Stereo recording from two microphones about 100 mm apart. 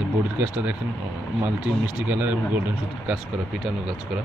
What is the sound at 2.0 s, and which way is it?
Speech, 15° right (ahead or behind).